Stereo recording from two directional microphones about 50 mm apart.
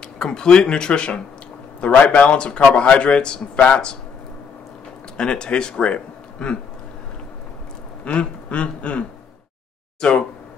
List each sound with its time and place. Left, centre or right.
0.2 s speech: centre
5.1 s speech: centre
8.0 s speech: left